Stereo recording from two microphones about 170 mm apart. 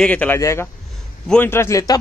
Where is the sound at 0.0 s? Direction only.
10° left (ahead or behind).